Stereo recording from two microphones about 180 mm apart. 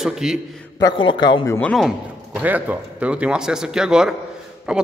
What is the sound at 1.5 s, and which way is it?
Speech, 5° left (ahead or behind).